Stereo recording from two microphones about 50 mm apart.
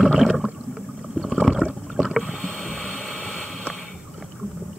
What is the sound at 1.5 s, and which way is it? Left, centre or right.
Rowboat, centre.